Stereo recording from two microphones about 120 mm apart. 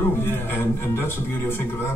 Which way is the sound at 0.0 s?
20° left (ahead or behind).